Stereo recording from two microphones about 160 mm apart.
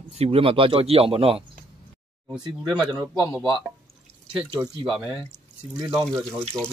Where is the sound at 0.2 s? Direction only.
35° right (ahead or behind).